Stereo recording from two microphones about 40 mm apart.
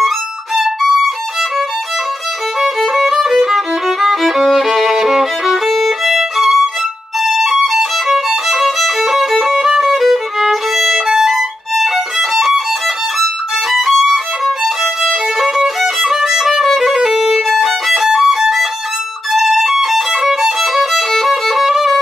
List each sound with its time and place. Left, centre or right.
2.6 s violin: centre